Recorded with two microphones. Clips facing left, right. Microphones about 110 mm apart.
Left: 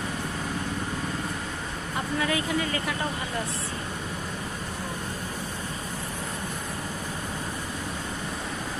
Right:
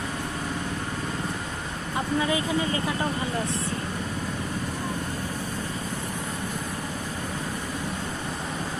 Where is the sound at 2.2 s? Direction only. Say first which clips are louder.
Right 1 dB; 25° right (ahead or behind).